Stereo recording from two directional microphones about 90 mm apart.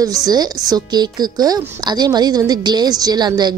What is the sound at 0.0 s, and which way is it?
A woman's voice, 45° right (ahead or behind).